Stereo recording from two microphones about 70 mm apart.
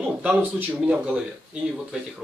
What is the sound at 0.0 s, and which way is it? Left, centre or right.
Speech, right.